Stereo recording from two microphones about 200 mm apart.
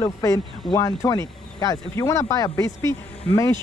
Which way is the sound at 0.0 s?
15° left (ahead or behind).